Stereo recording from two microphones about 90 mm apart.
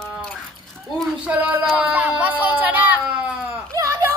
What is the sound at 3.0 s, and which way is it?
Baby cry, 10° right (ahead or behind).